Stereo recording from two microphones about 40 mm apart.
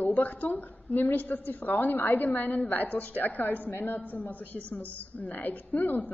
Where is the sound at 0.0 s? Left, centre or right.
Left.